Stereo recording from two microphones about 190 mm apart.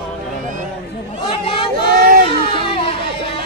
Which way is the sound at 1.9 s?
50° right (ahead or behind).